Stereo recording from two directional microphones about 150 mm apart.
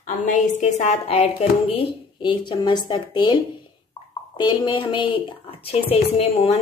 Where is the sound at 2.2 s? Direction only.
30° left (ahead or behind).